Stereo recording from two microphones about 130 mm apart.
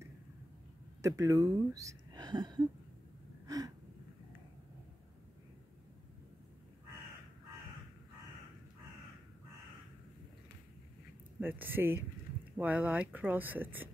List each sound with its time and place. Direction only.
1.0 s speech: 25° right (ahead or behind)
3.4 s gasp: 30° right (ahead or behind)
11.3 s speech: 15° right (ahead or behind)